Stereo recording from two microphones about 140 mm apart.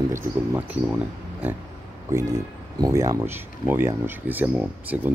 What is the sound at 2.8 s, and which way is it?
Speech, 25° right (ahead or behind).